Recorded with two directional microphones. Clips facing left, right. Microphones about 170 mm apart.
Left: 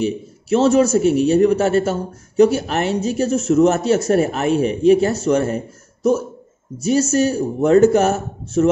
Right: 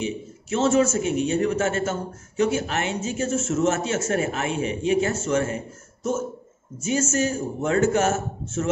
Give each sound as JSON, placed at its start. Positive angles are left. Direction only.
{"t": 0.0, "sound": "a man's voice", "side_deg": 35}
{"t": 6.8, "sound": "speech", "side_deg": 35}